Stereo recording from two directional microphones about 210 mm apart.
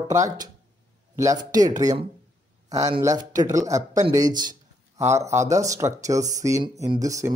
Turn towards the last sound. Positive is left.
turn(degrees=-15)  # may be behind; listen again after turning